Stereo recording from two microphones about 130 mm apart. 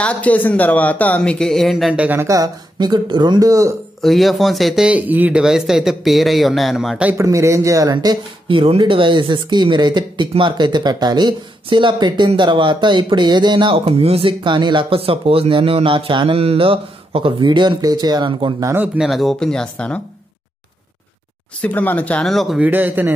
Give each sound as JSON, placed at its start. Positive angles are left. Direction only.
{"t": 0.0, "sound": "a man's voice", "side_deg": 10}
{"t": 2.2, "sound": "speech", "side_deg": -25}
{"t": 4.0, "sound": "speech", "side_deg": 0}
{"t": 7.2, "sound": "speech", "side_deg": -25}
{"t": 18.9, "sound": "speech", "side_deg": 0}
{"t": 21.5, "sound": "a man's voice", "side_deg": 15}
{"t": 22.6, "sound": "speech", "side_deg": -15}